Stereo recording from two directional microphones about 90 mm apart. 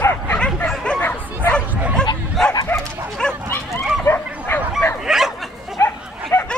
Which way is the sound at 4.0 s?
25° left (ahead or behind).